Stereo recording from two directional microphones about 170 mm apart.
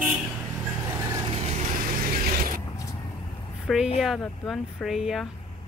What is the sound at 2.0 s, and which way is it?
Mechanisms, 55° right (ahead or behind).